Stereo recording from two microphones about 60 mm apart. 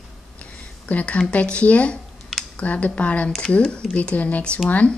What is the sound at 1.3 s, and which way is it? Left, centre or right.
Speech, left.